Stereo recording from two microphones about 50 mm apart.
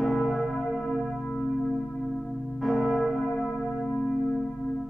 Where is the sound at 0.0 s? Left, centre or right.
Centre.